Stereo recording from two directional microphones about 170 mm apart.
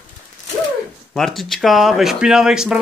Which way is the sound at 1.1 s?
Centre (ahead or behind).